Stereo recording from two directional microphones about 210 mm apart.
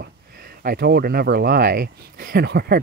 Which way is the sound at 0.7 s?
45° right (ahead or behind).